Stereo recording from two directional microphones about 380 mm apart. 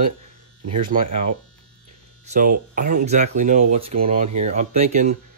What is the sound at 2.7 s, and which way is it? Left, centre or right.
Speech, right.